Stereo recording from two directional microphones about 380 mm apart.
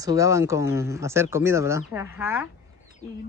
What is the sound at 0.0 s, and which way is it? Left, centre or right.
Speech, centre.